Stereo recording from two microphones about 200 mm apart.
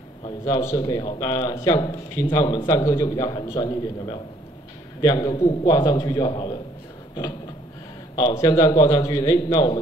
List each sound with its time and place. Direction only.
0.2 s a man's voice: 20° left (ahead or behind)
8.2 s a man's voice: 20° left (ahead or behind)